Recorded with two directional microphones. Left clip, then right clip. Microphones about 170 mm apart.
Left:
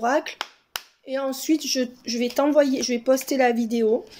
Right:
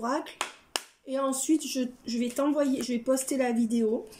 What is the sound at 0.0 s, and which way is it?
Speech, 20° right (ahead or behind).